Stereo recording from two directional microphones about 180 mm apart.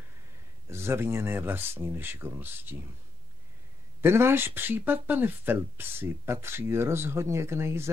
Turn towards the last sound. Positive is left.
turn(degrees=-15)  # may be behind; listen again after turning